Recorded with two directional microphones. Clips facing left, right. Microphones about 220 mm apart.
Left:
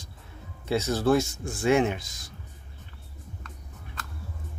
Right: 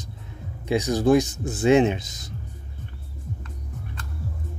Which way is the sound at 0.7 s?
15° right (ahead or behind).